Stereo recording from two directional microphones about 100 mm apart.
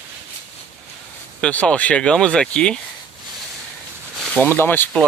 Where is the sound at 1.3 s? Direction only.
10° left (ahead or behind).